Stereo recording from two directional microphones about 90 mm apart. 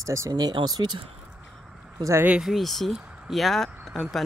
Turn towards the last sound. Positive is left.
turn(degrees=0)  # may be behind; listen again after turning